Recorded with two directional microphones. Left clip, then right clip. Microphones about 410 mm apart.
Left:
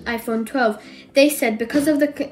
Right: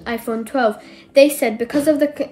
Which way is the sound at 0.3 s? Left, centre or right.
Centre.